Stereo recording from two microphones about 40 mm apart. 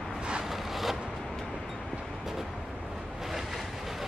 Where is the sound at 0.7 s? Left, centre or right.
Centre.